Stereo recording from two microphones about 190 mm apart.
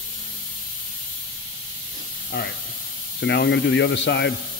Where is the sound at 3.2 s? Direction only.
65° left (ahead or behind).